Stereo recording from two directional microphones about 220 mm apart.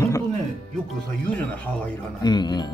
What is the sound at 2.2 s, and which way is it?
Speech, 20° left (ahead or behind).